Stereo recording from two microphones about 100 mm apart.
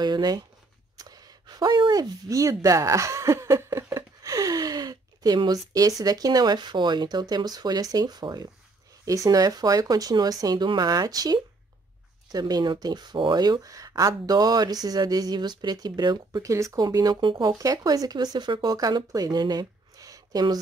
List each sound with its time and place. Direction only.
0.0 s speech: 45° right (ahead or behind)
16.4 s speech: 30° right (ahead or behind)
16.8 s speech: 40° right (ahead or behind)